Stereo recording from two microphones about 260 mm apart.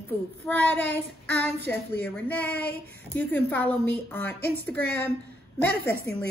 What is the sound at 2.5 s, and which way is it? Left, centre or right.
Child singing, left.